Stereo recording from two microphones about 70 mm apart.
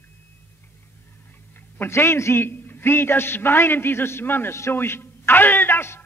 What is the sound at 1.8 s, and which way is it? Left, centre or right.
A man's voice, left.